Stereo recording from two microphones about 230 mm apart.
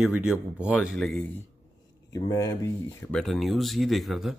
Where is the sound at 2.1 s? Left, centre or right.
Centre.